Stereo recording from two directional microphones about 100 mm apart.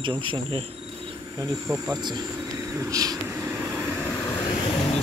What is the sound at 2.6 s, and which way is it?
Speech, 30° right (ahead or behind).